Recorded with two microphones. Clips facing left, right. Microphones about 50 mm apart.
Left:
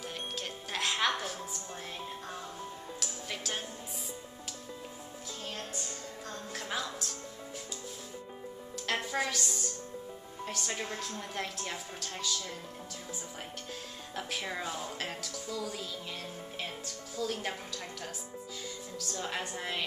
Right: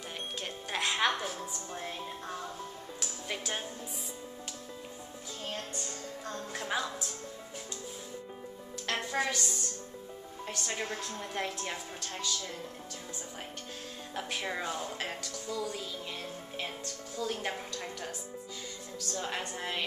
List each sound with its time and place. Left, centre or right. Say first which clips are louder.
0.4 s music: right 2 dB; centre
1.4 s speech: right 2 dB; centre
3.0 s music: right 3 dB; centre
5.5 s a woman's voice: right 2 dB; centre
8.8 s speech: right 1 dB; centre
14.1 s speech: right 1 dB; centre